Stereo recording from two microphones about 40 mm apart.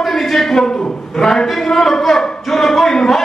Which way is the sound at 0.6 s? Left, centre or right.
Left.